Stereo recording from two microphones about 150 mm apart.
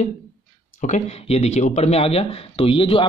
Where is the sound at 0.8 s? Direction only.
50° left (ahead or behind).